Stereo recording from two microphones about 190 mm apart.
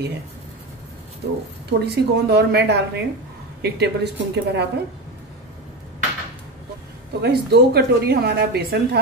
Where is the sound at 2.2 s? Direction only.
60° right (ahead or behind).